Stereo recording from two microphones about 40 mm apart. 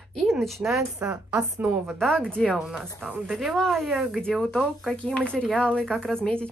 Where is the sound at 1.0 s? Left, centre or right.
Right.